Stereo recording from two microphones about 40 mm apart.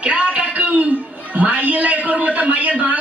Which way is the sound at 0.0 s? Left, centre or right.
Right.